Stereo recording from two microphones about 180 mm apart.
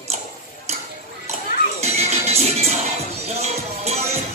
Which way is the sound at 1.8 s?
35° right (ahead or behind).